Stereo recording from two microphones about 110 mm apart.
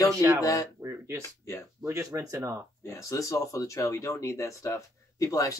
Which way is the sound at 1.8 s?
30° right (ahead or behind).